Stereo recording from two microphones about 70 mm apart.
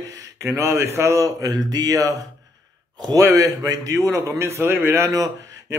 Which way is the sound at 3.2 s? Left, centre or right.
Right.